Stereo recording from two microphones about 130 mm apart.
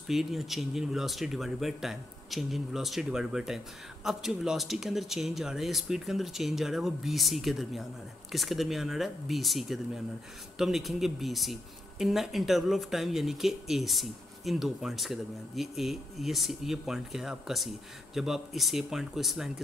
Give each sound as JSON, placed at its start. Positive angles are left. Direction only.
{"t": 0.1, "sound": "speech", "side_deg": 0}